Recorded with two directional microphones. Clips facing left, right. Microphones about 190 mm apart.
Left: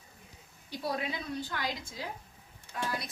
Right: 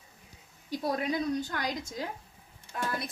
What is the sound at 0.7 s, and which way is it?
Speech, 45° right (ahead or behind).